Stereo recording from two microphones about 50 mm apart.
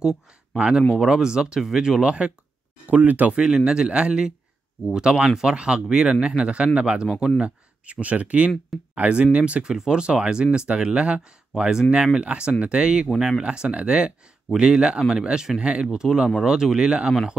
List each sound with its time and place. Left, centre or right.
0.6 s speech: centre
3.3 s speech: centre